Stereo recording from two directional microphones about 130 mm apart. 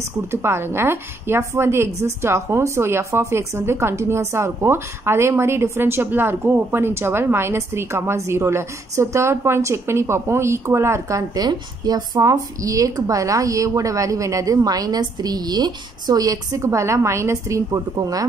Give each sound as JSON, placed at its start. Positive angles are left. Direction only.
{"t": 0.3, "sound": "a woman's voice", "side_deg": -20}